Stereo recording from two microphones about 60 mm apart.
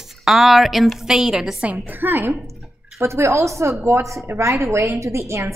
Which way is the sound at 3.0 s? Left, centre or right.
Right.